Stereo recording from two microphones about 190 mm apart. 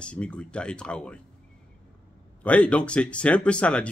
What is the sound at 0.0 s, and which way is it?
Speech, 5° left (ahead or behind).